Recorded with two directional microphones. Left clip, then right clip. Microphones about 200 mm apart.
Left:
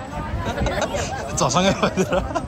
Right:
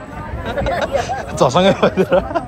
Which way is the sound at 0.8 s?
20° left (ahead or behind).